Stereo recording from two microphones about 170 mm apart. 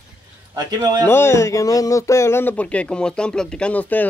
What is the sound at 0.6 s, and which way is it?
Speech, 20° right (ahead or behind).